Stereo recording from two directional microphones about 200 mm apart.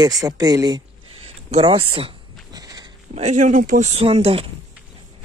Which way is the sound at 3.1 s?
35° right (ahead or behind).